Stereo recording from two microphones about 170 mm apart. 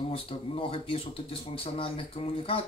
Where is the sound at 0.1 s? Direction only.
35° left (ahead or behind).